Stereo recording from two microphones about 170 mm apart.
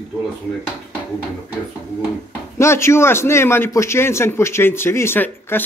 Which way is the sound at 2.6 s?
15° left (ahead or behind).